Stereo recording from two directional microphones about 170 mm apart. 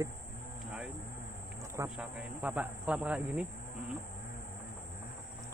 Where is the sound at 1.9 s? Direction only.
5° right (ahead or behind).